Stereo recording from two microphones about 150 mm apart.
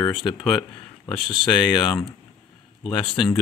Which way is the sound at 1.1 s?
35° left (ahead or behind).